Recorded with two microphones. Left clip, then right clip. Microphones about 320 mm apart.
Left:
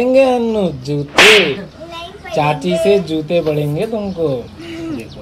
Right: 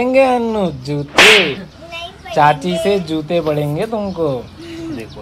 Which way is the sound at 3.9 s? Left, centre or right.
Right.